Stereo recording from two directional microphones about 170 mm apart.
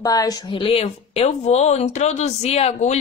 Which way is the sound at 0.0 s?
20° left (ahead or behind).